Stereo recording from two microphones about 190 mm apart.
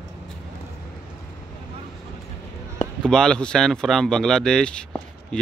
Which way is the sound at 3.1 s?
5° left (ahead or behind).